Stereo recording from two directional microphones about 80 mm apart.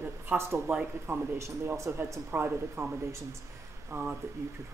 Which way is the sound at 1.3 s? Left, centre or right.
Right.